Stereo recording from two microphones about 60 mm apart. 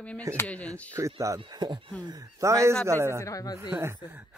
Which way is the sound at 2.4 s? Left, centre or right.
Right.